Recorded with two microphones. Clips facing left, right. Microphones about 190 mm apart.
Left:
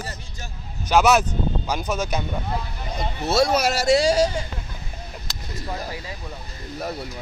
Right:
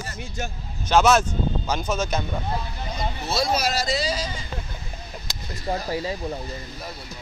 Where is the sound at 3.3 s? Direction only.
65° left (ahead or behind).